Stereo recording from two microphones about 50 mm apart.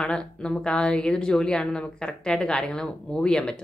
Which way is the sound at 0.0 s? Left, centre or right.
Centre.